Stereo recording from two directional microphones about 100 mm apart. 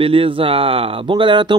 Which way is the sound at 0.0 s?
65° right (ahead or behind).